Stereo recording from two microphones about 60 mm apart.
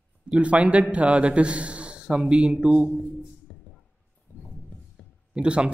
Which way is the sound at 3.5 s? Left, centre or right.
Centre.